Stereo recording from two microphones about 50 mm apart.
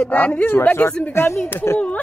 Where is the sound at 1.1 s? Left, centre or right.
Left.